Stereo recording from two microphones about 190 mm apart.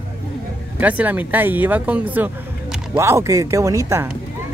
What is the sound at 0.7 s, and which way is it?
Speech, 10° right (ahead or behind).